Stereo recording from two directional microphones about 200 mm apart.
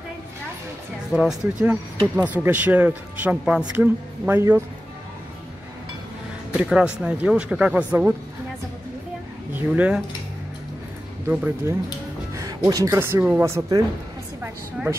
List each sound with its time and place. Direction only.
1.1 s speech: centre (ahead or behind)
6.6 s speech: 5° right (ahead or behind)
9.5 s speech: 10° right (ahead or behind)
11.2 s speech: 10° right (ahead or behind)
14.4 s a sound: 10° right (ahead or behind)